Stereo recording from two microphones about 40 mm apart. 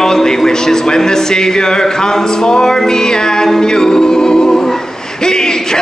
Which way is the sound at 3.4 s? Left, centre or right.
Centre.